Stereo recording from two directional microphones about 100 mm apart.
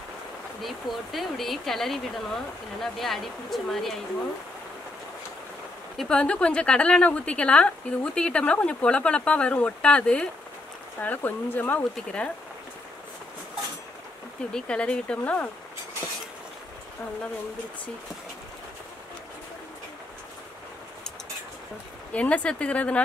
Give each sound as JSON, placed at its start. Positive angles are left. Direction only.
{"t": 0.6, "sound": "speech", "side_deg": 0}
{"t": 5.9, "sound": "a woman's voice", "side_deg": 10}
{"t": 14.5, "sound": "a woman's voice", "side_deg": 10}
{"t": 22.1, "sound": "a woman's voice", "side_deg": 15}